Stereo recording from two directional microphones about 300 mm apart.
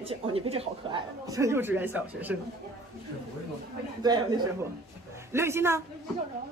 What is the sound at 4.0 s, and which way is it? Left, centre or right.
A woman's voice, centre.